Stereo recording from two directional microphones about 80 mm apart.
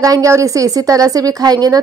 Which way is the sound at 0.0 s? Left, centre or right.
Right.